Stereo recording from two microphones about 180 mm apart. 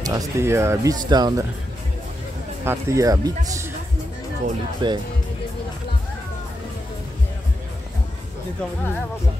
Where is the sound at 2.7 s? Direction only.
15° right (ahead or behind).